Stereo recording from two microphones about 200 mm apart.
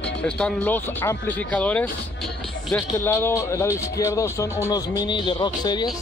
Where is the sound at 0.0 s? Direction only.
5° left (ahead or behind); by 5.9 s 20° left (ahead or behind).